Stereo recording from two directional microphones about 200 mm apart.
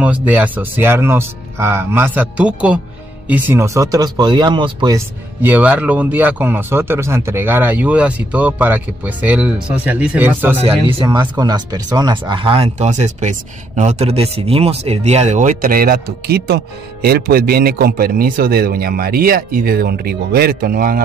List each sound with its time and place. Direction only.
0.0 s speech: 10° right (ahead or behind)
10.6 s speech: 25° right (ahead or behind); by 21.0 s 45° right (ahead or behind)